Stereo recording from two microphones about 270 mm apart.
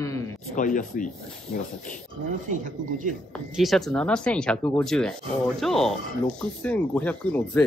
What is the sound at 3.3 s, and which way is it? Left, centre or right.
Speech, centre.